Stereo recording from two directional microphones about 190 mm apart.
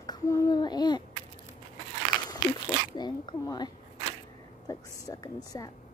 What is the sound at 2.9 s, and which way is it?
A woman's voice, 25° left (ahead or behind).